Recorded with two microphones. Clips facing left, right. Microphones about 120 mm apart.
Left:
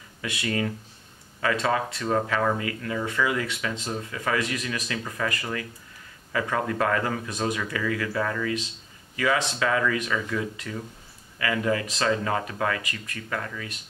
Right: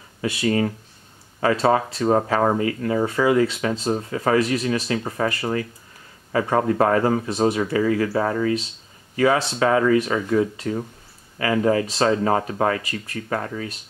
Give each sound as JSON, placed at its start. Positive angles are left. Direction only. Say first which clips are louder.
{"t": 0.2, "sound": "speech", "louder": "right 7 dB", "side_deg": -35}